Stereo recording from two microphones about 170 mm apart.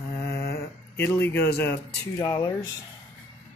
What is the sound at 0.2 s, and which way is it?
Speech, 15° left (ahead or behind).